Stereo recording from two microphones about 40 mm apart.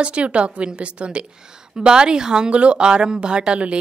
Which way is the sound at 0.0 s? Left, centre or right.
Right.